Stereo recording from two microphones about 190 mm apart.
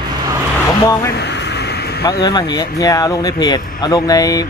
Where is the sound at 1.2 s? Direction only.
65° left (ahead or behind).